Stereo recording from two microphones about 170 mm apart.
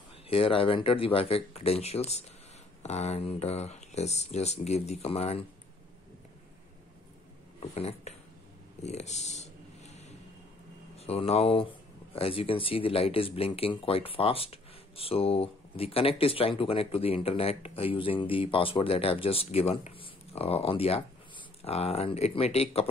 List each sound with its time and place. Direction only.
0.3 s speech: 30° left (ahead or behind)
7.7 s speech: 40° left (ahead or behind)
8.8 s a sound: 40° left (ahead or behind)
11.0 s speech: 35° left (ahead or behind)